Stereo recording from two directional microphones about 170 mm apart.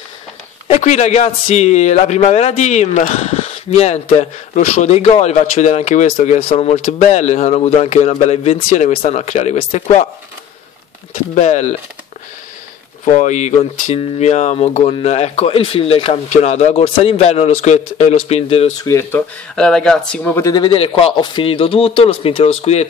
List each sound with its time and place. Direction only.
0.7 s speech: 45° left (ahead or behind)
11.3 s speech: 40° left (ahead or behind)
13.0 s speech: 45° left (ahead or behind)
18.9 s speech: 15° left (ahead or behind)
19.5 s speech: 5° left (ahead or behind)
20.5 s speech: 30° left (ahead or behind)